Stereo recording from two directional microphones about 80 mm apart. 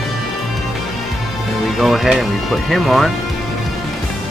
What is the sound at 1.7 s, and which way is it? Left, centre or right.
Speech, centre.